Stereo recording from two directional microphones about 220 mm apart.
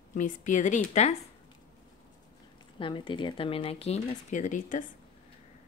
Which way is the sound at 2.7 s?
25° left (ahead or behind).